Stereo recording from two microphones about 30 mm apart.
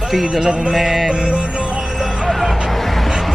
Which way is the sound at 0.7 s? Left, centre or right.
Centre.